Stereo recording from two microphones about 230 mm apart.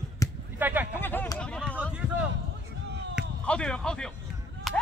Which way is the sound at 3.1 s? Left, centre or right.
Centre.